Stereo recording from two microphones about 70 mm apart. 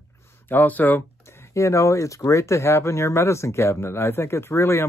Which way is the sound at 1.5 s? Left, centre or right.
Left.